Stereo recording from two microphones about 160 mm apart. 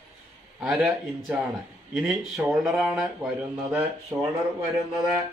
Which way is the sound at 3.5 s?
20° right (ahead or behind).